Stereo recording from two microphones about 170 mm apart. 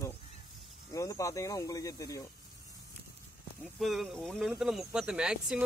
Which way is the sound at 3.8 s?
Centre (ahead or behind).